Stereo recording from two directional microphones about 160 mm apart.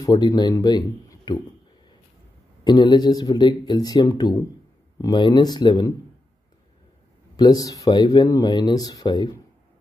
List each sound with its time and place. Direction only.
0.0 s speech: 25° left (ahead or behind)
2.6 s speech: 25° left (ahead or behind)
7.3 s speech: 25° left (ahead or behind)